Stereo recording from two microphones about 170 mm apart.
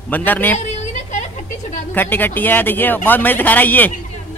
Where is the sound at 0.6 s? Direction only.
45° left (ahead or behind).